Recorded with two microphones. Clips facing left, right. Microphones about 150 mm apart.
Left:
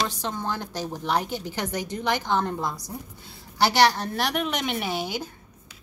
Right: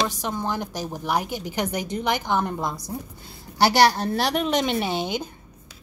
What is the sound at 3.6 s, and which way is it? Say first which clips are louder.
A woman's voice: right 2 dB; 35° right (ahead or behind).